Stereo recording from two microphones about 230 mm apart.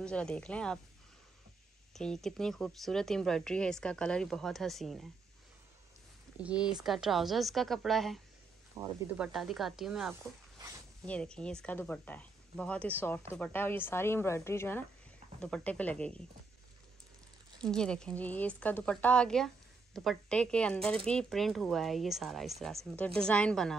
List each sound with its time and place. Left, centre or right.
0.0 s speech: centre
2.0 s speech: centre
6.3 s speech: centre
17.6 s speech: centre